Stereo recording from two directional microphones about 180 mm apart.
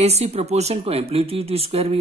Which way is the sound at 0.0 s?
35° right (ahead or behind).